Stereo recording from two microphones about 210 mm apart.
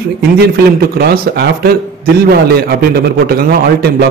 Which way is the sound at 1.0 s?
50° right (ahead or behind).